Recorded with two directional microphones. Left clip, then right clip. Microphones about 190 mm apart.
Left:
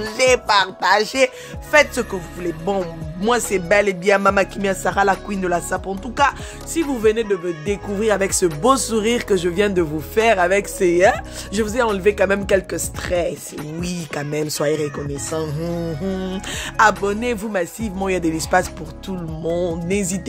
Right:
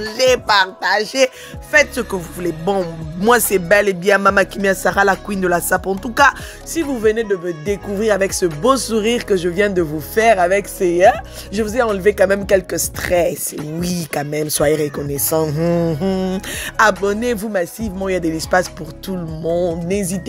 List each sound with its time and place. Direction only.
0.0 s speech: 5° right (ahead or behind)
0.7 s speech: 10° left (ahead or behind)
2.0 s speech: 25° right (ahead or behind)
6.7 s speech: 10° right (ahead or behind)
15.2 s music: 35° right (ahead or behind)
16.3 s speech: 15° right (ahead or behind)